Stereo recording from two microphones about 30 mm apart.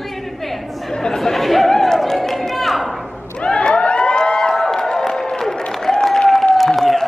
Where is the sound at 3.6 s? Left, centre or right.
Left.